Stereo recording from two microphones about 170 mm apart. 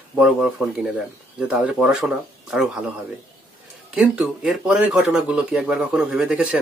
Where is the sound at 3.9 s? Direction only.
5° right (ahead or behind).